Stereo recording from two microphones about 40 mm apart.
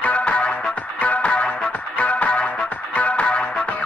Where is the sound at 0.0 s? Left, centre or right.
Left.